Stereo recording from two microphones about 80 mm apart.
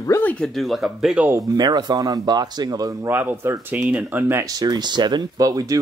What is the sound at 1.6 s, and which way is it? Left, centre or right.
Speech, right.